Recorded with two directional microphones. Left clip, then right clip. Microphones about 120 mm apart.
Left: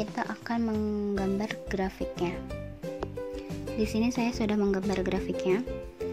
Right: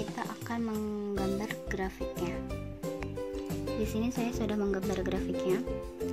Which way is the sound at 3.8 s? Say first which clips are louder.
Left 7 dB; 20° left (ahead or behind).